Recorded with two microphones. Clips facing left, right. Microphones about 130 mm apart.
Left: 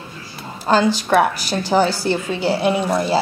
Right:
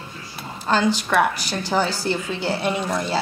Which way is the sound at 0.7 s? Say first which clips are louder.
Left 4 dB; 10° left (ahead or behind).